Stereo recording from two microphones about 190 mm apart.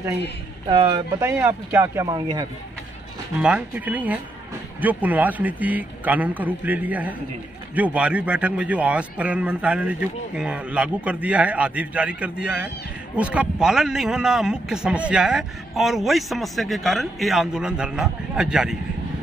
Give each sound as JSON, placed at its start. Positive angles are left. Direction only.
{"t": 0.7, "sound": "speech", "side_deg": -25}
{"t": 3.3, "sound": "speech", "side_deg": -5}